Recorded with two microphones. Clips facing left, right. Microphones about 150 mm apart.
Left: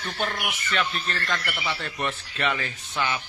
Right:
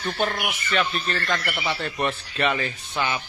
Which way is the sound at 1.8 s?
25° right (ahead or behind).